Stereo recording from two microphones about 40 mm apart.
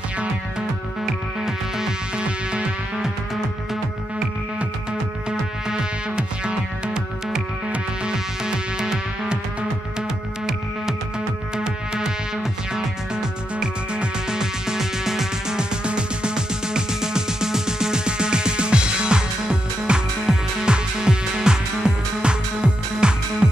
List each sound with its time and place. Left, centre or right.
1.4 s music: centre
2.1 s music: right
5.7 s music: right
11.5 s music: right
15.8 s music: right